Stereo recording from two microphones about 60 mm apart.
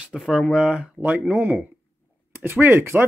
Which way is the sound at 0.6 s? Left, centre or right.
Centre.